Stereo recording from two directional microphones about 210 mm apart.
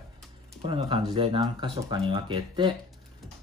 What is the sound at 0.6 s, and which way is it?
Speech, 25° right (ahead or behind).